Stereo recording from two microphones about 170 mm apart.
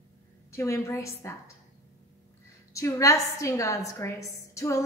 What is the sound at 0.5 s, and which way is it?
Speech, 15° left (ahead or behind).